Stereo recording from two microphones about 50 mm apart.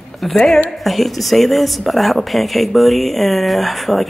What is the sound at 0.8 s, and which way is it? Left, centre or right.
Speech, centre.